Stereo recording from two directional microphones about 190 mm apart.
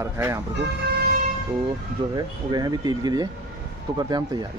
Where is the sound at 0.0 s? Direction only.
15° right (ahead or behind).